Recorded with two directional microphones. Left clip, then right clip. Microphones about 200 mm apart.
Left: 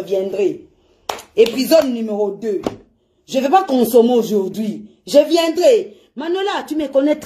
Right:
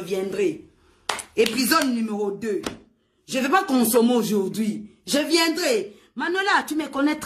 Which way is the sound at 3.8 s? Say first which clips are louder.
Left 7 dB; 10° right (ahead or behind).